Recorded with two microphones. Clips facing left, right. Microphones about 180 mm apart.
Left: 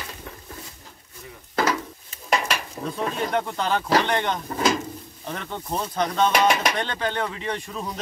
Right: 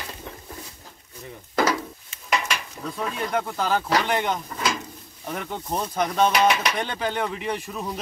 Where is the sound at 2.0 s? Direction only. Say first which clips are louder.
Left 3 dB; 40° left (ahead or behind).